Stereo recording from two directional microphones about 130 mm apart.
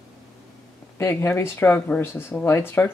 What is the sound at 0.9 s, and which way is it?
Speech, 20° left (ahead or behind).